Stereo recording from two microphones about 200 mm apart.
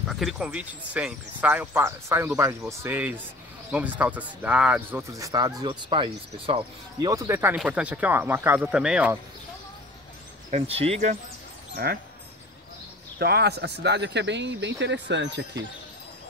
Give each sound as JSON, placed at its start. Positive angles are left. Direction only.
{"t": 0.1, "sound": "speech", "side_deg": 0}
{"t": 10.5, "sound": "speech", "side_deg": -30}
{"t": 11.7, "sound": "speech", "side_deg": -50}
{"t": 13.2, "sound": "speech", "side_deg": -55}